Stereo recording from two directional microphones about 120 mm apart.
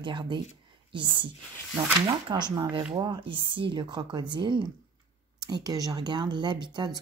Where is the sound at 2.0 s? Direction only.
40° right (ahead or behind).